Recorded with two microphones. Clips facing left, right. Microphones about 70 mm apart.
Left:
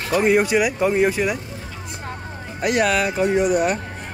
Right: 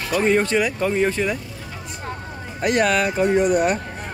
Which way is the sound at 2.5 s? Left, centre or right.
Centre.